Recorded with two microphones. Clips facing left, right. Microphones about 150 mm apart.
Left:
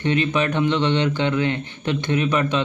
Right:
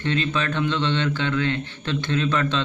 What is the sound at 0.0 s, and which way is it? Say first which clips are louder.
Speech: left 4 dB; 15° left (ahead or behind).